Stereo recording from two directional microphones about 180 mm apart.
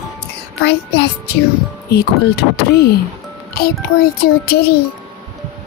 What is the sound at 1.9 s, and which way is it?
Speech, 65° left (ahead or behind).